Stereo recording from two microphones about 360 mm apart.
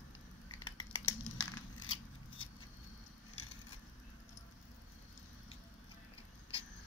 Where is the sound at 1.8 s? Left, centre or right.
Left.